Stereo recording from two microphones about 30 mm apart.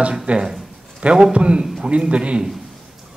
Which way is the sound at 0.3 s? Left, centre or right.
Right.